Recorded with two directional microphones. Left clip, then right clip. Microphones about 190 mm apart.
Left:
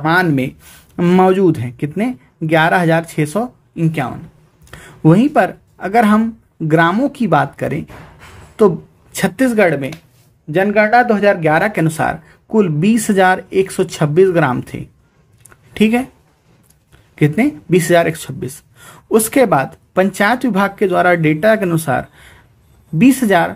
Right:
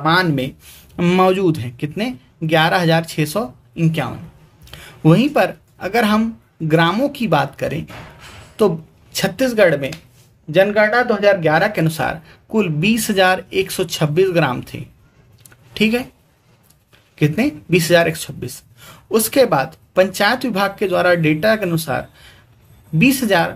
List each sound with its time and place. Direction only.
0.0 s speech: 30° left (ahead or behind)
4.6 s speech: 30° left (ahead or behind)
17.2 s speech: 30° left (ahead or behind)
23.0 s speech: 30° left (ahead or behind)